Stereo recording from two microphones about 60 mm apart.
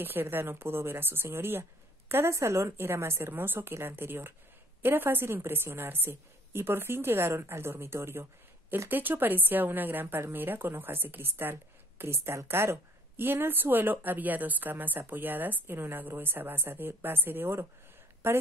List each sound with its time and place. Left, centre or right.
0.0 s a woman's voice: right